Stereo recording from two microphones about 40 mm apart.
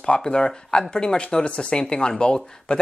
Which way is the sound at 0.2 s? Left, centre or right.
Centre.